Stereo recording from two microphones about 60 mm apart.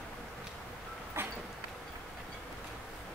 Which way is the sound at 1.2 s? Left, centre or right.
Right.